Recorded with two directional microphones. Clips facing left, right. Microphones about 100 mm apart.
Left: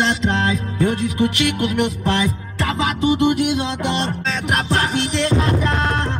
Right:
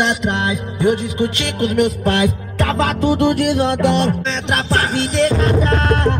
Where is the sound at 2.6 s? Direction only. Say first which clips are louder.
Right 3 dB; 60° right (ahead or behind).